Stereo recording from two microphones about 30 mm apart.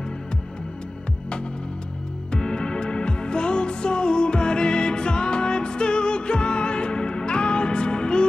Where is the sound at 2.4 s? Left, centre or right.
Left.